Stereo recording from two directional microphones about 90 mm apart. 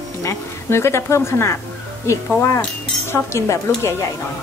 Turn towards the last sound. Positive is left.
turn(degrees=30)  # may be behind; listen again after turning